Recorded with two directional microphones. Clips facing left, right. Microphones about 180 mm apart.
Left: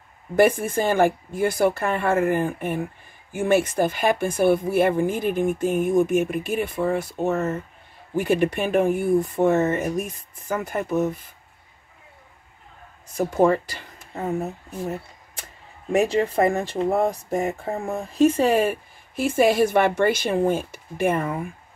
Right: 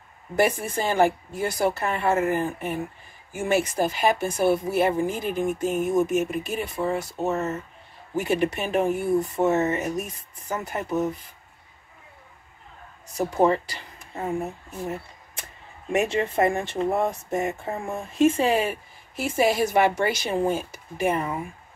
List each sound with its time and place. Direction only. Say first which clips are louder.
0.4 s speech: left 5 dB; 50° left (ahead or behind)
13.4 s speech: left 2 dB; 45° left (ahead or behind)